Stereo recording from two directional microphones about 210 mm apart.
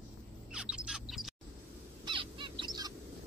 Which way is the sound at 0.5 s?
5° right (ahead or behind).